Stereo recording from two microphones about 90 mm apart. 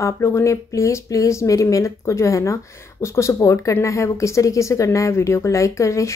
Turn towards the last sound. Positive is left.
turn(degrees=35)  # may be behind; listen again after turning